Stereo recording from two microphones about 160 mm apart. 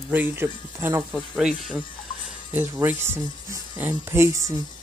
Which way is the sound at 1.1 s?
Centre (ahead or behind).